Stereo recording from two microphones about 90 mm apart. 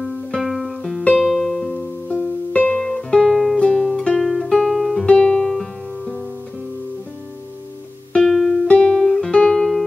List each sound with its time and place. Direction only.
0.0 s music: centre (ahead or behind)
2.0 s music: 15° left (ahead or behind)
8.1 s music: 5° left (ahead or behind)